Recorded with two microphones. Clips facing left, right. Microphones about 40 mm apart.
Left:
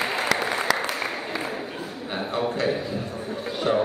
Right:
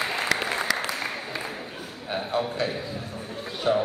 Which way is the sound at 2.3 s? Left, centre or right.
Left.